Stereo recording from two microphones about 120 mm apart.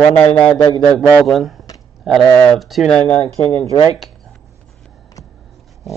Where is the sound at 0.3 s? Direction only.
10° left (ahead or behind).